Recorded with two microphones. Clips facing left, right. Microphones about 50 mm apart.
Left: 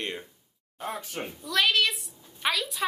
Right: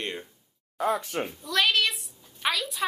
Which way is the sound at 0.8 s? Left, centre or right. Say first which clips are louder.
Right 8 dB; right.